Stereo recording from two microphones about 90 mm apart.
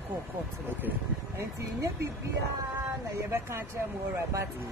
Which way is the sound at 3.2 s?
30° right (ahead or behind).